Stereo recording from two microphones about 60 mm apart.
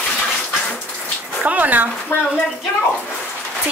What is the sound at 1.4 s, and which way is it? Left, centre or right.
Speech, right.